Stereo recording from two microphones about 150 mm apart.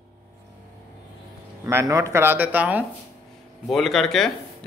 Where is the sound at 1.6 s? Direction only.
20° right (ahead or behind).